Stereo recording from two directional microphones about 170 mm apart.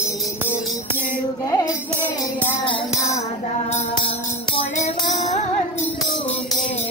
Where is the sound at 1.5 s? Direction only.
20° left (ahead or behind).